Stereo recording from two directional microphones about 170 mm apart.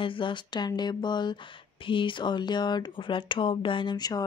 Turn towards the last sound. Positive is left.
turn(degrees=25)  # may be behind; listen again after turning